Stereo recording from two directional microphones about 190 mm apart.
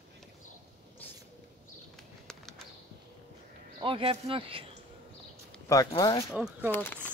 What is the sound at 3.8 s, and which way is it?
Speech, 30° right (ahead or behind).